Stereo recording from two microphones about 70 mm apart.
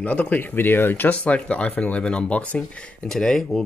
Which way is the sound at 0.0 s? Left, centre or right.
Left.